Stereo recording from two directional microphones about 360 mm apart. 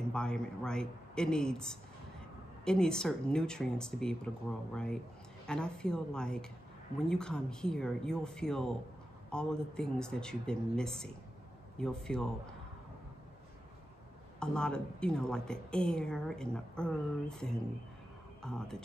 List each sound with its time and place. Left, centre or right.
0.1 s a woman's voice: centre
14.4 s a woman's voice: centre